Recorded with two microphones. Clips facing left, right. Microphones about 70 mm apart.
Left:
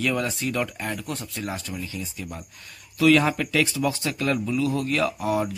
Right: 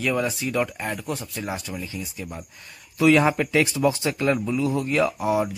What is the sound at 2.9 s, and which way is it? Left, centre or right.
Speech, centre.